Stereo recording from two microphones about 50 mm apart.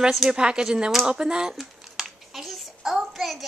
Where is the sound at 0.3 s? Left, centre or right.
Centre.